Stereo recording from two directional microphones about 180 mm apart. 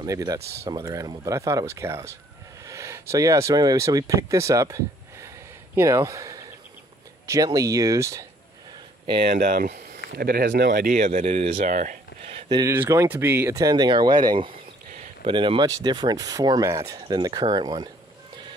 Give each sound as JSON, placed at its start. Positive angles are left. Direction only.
{"t": 0.0, "sound": "speech", "side_deg": -20}
{"t": 0.4, "sound": "speech", "side_deg": -60}
{"t": 0.7, "sound": "speech", "side_deg": -20}
{"t": 9.3, "sound": "speech", "side_deg": -55}
{"t": 12.3, "sound": "a sound", "side_deg": -25}
{"t": 12.7, "sound": "speech", "side_deg": -15}